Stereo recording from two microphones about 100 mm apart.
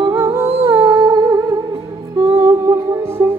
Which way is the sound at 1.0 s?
40° right (ahead or behind).